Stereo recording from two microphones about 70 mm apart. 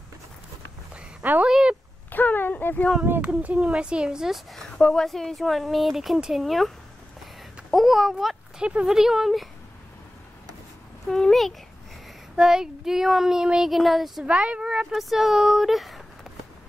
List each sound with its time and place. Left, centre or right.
1.5 s a sound: centre
2.0 s a sound: left
3.2 s a woman's voice: centre
4.6 s a woman's voice: centre
7.7 s a child's voice: centre
8.5 s a woman's voice: centre
11.1 s speech: centre
12.4 s speech: centre
14.2 s speech: centre
14.9 s speech: centre